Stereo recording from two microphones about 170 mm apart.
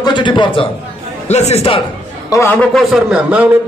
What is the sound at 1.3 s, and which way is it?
Speech, 40° left (ahead or behind).